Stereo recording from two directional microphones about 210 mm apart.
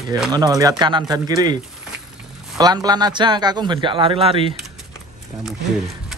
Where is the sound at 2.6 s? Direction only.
20° right (ahead or behind).